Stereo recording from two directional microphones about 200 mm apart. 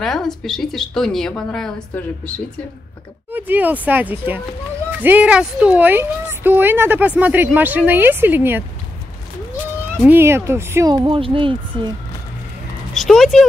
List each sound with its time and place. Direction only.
0.0 s speech: centre (ahead or behind)
3.3 s speech: 10° right (ahead or behind)
10.0 s speech: 10° right (ahead or behind)
12.9 s speech: centre (ahead or behind)